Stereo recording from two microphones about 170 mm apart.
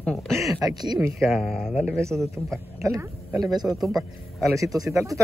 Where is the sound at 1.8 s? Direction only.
15° right (ahead or behind).